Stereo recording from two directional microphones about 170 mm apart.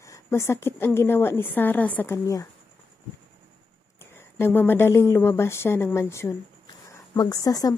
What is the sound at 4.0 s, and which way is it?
Speech, 15° left (ahead or behind).